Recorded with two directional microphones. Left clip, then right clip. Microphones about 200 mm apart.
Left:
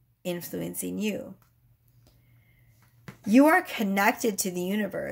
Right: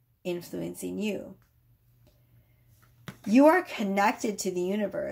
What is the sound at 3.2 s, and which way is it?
Speech, 30° left (ahead or behind).